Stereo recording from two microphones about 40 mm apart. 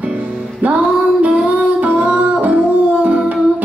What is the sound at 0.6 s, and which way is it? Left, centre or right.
Music, right.